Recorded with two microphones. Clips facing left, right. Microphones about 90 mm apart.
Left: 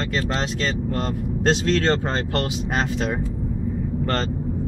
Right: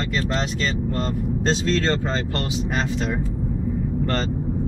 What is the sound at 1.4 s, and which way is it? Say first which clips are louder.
Speech: left 3 dB; 55° left (ahead or behind).